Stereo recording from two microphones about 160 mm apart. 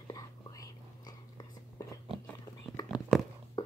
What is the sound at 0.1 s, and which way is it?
Whispering, 25° left (ahead or behind).